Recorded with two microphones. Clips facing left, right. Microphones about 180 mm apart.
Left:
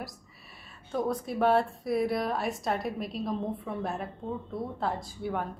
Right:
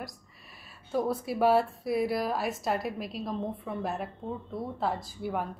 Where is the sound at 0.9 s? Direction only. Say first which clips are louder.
Right 1 dB; 5° right (ahead or behind).